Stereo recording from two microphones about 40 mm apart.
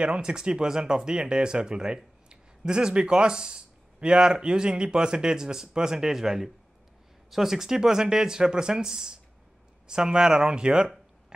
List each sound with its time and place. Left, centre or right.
0.2 s speech: right